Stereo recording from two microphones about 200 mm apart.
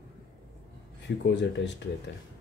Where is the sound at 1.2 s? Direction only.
60° left (ahead or behind).